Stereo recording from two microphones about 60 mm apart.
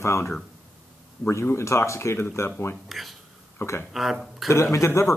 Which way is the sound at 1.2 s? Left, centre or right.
Left.